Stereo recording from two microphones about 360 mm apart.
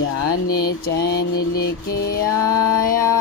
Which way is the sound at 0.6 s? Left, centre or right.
Left.